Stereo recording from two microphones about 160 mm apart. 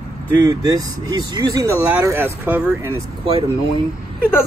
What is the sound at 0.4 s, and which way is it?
Speech, 25° right (ahead or behind).